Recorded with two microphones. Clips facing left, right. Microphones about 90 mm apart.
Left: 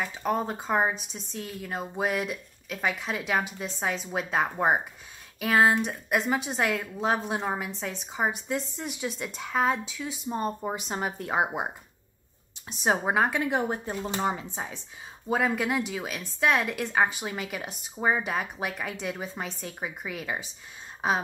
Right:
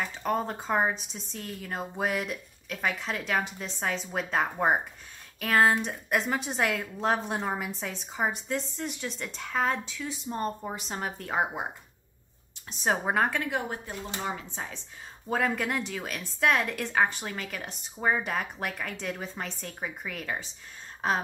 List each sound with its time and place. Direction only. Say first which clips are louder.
0.0 s a woman's voice: left 1 dB; 5° left (ahead or behind)
12.6 s a woman's voice: left 2 dB; 10° left (ahead or behind)
13.5 s speech: left 4 dB; 25° left (ahead or behind)
14.5 s a woman's voice: left 2 dB; 15° left (ahead or behind)